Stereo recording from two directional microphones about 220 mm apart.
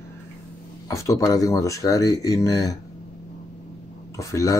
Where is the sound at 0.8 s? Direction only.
15° left (ahead or behind).